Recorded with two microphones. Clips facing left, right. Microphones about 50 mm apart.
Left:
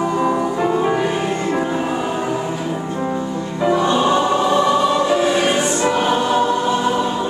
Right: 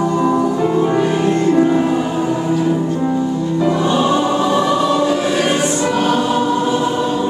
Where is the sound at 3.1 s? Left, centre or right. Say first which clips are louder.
Right 5 dB; centre.